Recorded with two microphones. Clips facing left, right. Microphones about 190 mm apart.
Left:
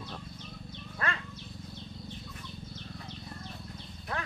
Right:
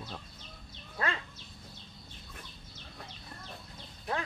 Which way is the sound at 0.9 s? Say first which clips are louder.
Right 1 dB; 25° right (ahead or behind).